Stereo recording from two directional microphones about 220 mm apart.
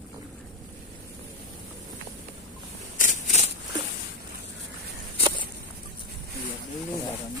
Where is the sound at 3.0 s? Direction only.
35° left (ahead or behind).